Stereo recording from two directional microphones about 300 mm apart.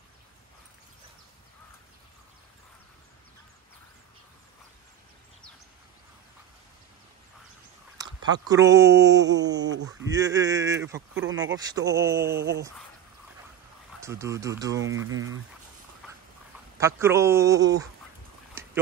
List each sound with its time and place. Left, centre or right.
8.0 s speech: centre
14.0 s speech: centre
16.7 s speech: centre
18.6 s a sound: centre